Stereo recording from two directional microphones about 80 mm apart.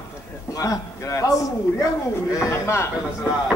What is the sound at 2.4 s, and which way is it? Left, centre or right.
Speech, left.